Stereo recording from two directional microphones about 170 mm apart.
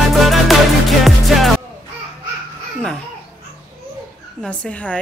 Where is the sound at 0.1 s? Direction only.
Centre (ahead or behind).